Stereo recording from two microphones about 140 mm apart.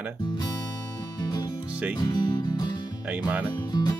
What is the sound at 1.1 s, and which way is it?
Music, 30° left (ahead or behind).